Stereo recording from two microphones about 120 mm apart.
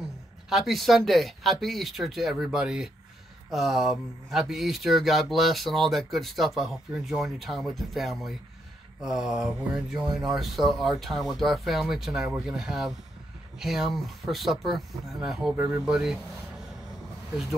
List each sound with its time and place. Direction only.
0.5 s speech: centre (ahead or behind)
15.5 s speech: 20° right (ahead or behind)
15.8 s speech: 5° right (ahead or behind)